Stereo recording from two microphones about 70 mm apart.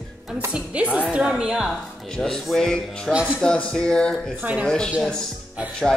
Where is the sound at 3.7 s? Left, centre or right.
Centre.